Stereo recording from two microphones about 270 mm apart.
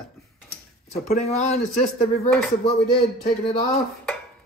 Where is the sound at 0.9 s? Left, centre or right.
Left.